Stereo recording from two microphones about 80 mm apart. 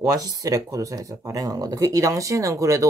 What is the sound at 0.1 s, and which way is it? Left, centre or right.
Speech, right.